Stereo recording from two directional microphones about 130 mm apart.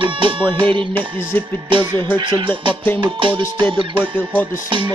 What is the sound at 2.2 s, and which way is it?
Speech, 40° right (ahead or behind).